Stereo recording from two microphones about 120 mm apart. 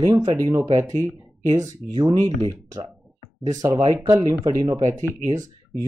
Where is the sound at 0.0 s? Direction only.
35° right (ahead or behind).